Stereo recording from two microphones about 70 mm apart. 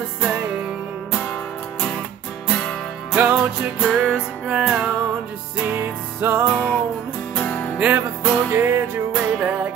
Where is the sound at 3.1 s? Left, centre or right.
Right.